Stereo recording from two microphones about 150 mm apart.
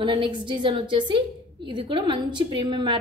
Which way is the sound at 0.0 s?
35° right (ahead or behind).